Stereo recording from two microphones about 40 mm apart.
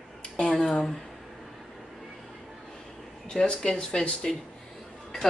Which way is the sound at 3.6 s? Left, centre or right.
Centre.